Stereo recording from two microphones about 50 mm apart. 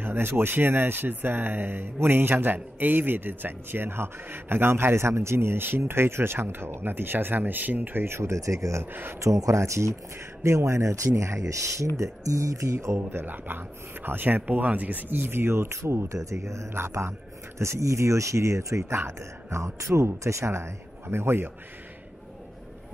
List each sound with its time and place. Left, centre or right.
0.0 s speech: right
10.4 s speech: right
12.7 s speech: right
15.8 s speech: right
17.6 s speech: right
18.9 s speech: right